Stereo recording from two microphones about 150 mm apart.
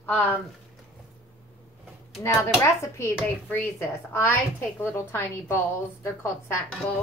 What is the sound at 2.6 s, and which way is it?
Speech, 20° left (ahead or behind).